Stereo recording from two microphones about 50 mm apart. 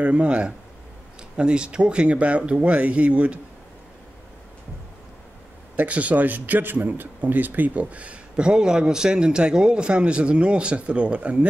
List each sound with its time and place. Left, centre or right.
0.0 s a man's voice: right
5.8 s a man's voice: right
8.4 s a man's voice: centre